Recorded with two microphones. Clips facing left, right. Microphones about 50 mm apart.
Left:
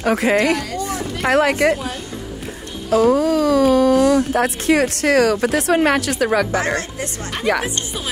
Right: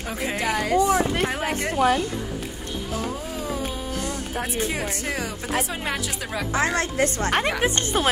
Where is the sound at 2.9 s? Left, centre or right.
Left.